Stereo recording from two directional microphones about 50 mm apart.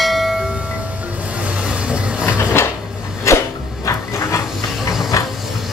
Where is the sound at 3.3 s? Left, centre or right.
Left.